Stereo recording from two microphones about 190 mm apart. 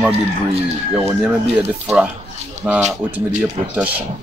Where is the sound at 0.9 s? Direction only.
10° right (ahead or behind).